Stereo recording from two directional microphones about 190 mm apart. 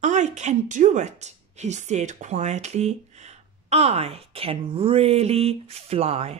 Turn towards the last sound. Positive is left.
turn(degrees=-35)  # may be behind; listen again after turning